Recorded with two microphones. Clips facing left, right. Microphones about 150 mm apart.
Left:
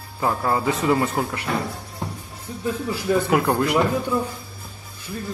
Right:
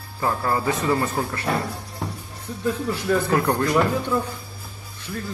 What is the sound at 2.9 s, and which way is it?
Speech, 10° left (ahead or behind).